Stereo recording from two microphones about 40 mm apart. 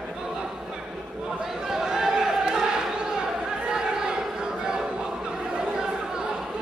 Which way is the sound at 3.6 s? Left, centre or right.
Centre.